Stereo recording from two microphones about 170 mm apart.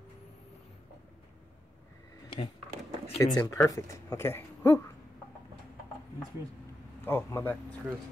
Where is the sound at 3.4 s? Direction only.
20° left (ahead or behind).